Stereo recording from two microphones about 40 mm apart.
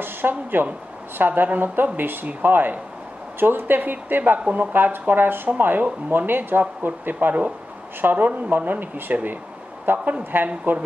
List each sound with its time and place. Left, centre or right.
0.0 s a woman's voice: right
9.9 s speech: right
10.3 s speech: right